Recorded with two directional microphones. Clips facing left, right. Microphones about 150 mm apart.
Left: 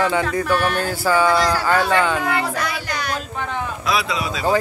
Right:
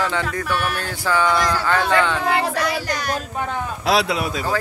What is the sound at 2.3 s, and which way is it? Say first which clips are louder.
Child singing: right 2 dB; 35° right (ahead or behind).